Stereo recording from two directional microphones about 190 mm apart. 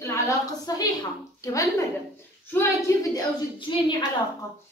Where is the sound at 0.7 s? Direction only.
20° left (ahead or behind).